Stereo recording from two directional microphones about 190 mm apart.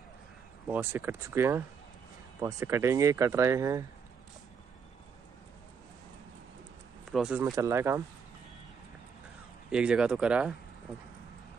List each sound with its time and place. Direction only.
0.7 s speech: 10° right (ahead or behind)
7.1 s speech: centre (ahead or behind)
7.5 s speech: 15° right (ahead or behind)
9.7 s speech: 5° right (ahead or behind)